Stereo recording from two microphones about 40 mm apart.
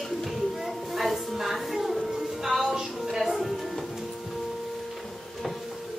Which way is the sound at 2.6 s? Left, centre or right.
Centre.